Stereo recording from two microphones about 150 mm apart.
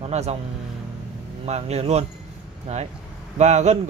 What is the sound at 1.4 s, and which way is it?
Speech, 45° right (ahead or behind).